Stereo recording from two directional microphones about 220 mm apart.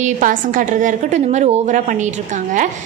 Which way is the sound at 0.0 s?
35° right (ahead or behind).